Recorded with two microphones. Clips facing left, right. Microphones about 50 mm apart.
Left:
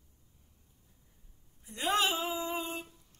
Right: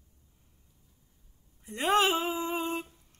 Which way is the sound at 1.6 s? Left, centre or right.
Right.